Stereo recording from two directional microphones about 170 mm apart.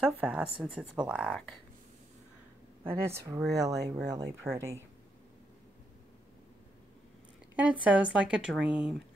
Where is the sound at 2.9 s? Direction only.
15° right (ahead or behind).